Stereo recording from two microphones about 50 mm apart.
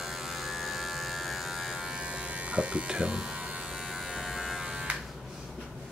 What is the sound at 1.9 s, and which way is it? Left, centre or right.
Electric shaver, right.